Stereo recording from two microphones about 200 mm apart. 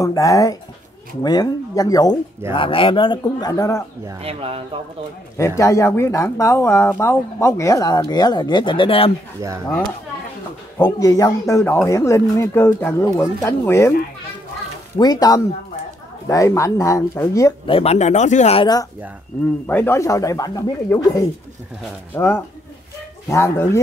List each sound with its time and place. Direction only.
0.0 s speech: 15° left (ahead or behind)
4.2 s speech: 30° right (ahead or behind)
5.6 s speech: 15° left (ahead or behind)
10.8 s speech: 20° left (ahead or behind)
15.0 s speech: 20° left (ahead or behind)
17.7 s speech: 35° left (ahead or behind)
19.6 s speech: 10° left (ahead or behind)